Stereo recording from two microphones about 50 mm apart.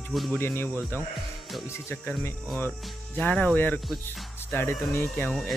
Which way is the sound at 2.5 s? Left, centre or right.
Left.